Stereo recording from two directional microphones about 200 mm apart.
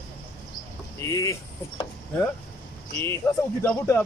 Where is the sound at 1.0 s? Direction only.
15° left (ahead or behind).